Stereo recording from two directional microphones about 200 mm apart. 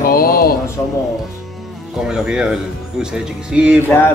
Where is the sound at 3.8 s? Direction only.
10° left (ahead or behind).